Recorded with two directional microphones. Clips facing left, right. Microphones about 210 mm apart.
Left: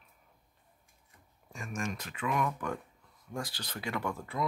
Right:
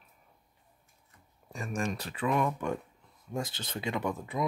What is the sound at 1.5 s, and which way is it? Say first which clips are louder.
Speech: right 4 dB; 35° right (ahead or behind).